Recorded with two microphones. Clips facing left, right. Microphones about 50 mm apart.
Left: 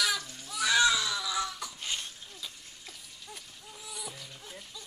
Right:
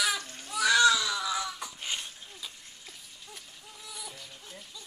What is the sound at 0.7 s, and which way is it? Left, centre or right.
Baby cry, centre.